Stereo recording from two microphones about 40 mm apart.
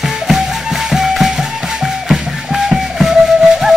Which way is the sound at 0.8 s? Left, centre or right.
Centre.